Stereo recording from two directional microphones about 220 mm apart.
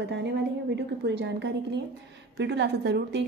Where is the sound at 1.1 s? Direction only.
50° right (ahead or behind).